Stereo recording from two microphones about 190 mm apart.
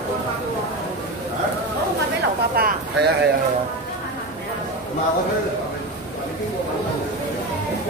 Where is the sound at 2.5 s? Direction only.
55° right (ahead or behind).